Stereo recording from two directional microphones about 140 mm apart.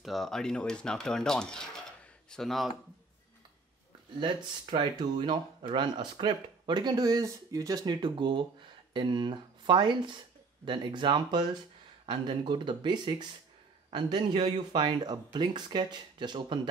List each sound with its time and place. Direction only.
0.0 s speech: centre (ahead or behind)
4.2 s speech: 35° right (ahead or behind)